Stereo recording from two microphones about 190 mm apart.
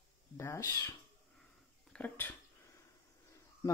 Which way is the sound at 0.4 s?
15° left (ahead or behind).